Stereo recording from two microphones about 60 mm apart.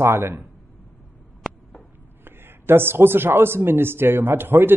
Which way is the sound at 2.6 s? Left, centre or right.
Right.